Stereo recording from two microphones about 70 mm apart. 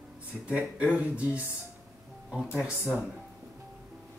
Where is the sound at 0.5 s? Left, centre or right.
Centre.